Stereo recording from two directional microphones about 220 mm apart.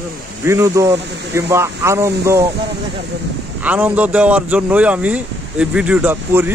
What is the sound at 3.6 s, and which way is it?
Speech, 5° right (ahead or behind).